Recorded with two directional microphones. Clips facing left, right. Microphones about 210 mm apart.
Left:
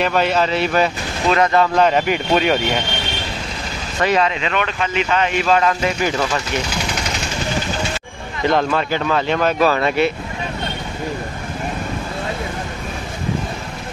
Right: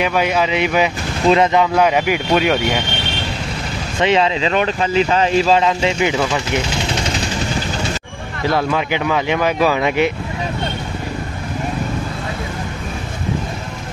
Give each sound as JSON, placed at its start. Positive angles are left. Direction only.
{"t": 0.0, "sound": "speech", "side_deg": -10}
{"t": 4.0, "sound": "speech", "side_deg": -25}
{"t": 8.5, "sound": "speech", "side_deg": -10}